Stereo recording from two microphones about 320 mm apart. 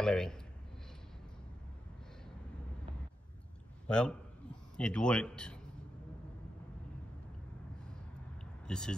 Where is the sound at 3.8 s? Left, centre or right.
Centre.